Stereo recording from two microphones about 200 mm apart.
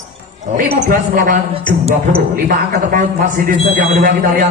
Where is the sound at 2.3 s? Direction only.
45° right (ahead or behind).